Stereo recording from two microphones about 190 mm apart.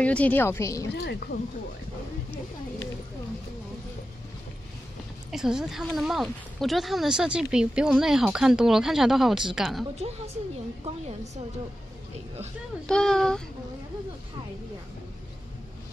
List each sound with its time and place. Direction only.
0.0 s a woman's voice: 5° left (ahead or behind)
0.9 s speech: 60° left (ahead or behind)
5.3 s speech: 5° right (ahead or behind)
9.9 s a woman's voice: 35° right (ahead or behind)
12.8 s speech: 5° left (ahead or behind)